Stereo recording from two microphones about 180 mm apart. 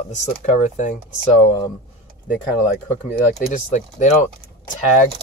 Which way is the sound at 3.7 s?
40° left (ahead or behind).